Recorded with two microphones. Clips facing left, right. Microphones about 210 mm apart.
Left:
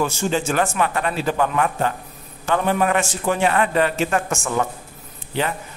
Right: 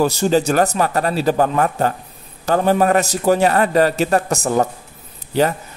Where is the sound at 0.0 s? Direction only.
35° right (ahead or behind).